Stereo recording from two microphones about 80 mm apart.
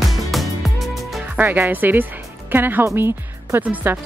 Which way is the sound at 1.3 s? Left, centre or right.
Right.